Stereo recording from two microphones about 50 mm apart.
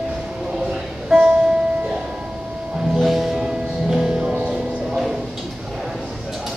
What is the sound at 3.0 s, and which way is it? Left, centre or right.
Music, centre.